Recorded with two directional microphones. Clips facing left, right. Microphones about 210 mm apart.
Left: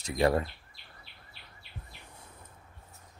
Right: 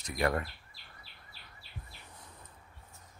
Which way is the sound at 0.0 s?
25° left (ahead or behind).